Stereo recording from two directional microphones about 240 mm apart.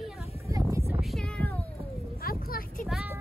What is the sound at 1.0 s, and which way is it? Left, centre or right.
Meow, centre.